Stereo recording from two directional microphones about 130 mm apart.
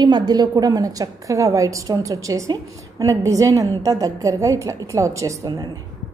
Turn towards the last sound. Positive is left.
turn(degrees=-25)  # may be behind; listen again after turning